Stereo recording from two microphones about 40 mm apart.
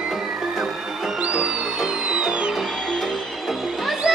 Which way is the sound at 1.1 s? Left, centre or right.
Right.